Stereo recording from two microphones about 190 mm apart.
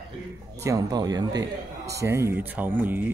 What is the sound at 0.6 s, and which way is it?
Speech, 20° right (ahead or behind).